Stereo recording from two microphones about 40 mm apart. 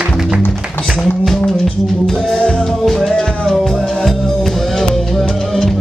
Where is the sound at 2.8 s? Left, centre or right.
Centre.